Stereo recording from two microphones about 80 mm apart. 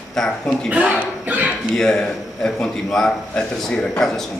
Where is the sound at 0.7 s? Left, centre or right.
Centre.